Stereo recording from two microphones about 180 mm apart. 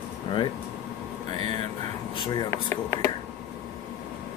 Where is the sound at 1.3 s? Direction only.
35° right (ahead or behind).